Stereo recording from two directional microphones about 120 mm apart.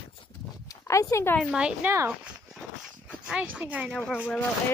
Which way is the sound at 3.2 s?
10° right (ahead or behind).